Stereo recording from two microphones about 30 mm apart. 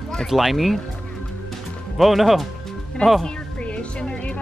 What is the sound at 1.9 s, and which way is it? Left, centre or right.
Speech, centre.